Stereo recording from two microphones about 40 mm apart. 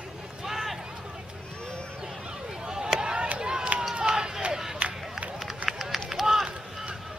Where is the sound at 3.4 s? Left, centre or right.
Centre.